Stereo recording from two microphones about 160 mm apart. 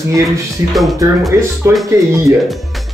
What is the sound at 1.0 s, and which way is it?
Speech, 20° right (ahead or behind).